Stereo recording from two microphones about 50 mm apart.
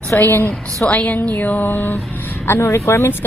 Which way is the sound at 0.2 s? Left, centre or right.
Left.